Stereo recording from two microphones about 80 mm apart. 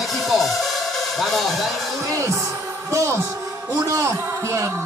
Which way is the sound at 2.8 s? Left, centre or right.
Right.